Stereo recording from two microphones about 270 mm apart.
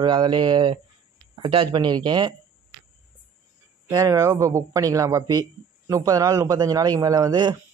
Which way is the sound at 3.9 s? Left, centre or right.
Centre.